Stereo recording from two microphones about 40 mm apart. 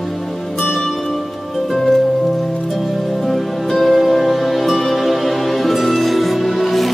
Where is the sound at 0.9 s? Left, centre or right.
Centre.